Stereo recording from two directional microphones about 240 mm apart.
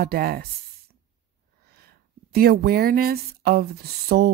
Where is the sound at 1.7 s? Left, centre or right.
Right.